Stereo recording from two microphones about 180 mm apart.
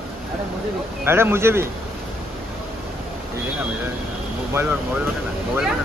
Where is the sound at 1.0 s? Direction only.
15° right (ahead or behind).